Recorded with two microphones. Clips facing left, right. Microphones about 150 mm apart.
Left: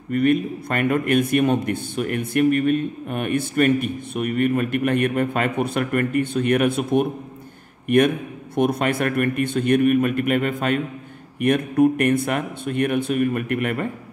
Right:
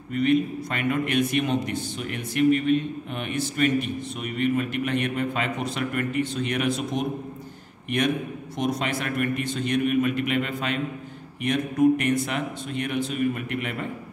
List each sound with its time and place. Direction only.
0.1 s a man's voice: 55° left (ahead or behind)